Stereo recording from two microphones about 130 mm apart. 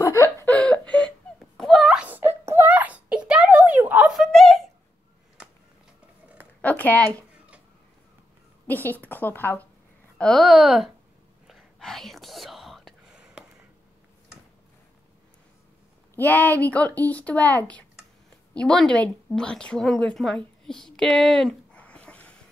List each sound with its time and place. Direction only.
0.0 s a sound: 25° left (ahead or behind)
0.5 s wail: 10° left (ahead or behind)
2.0 s a sound: 15° right (ahead or behind)
4.1 s wail: centre (ahead or behind)
6.6 s speech: 15° left (ahead or behind)
8.6 s a woman's voice: 15° left (ahead or behind)
10.1 s speech: 5° left (ahead or behind)
11.4 s whispering: centre (ahead or behind)
16.2 s a woman's voice: 15° left (ahead or behind)
20.6 s a sound: 5° left (ahead or behind)